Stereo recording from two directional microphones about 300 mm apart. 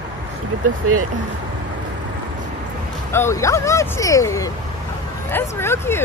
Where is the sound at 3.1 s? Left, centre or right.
Centre.